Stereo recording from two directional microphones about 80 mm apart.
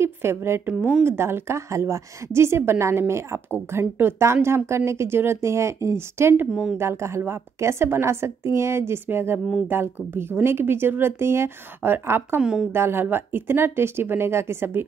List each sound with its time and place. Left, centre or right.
0.0 s a woman's voice: right
12.4 s a woman's voice: centre
12.7 s speech: right